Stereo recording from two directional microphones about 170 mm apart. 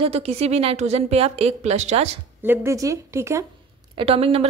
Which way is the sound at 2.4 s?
15° right (ahead or behind).